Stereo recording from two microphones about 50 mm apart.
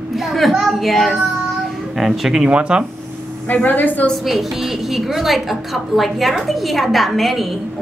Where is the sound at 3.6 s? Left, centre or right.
Left.